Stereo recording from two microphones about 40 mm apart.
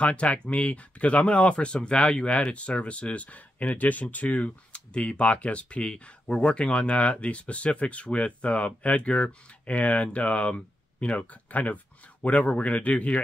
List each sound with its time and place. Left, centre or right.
0.0 s speech: left